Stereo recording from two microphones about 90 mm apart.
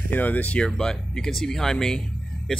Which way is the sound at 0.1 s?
15° left (ahead or behind).